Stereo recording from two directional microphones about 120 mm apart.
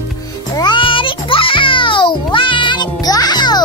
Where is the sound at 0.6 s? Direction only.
40° left (ahead or behind).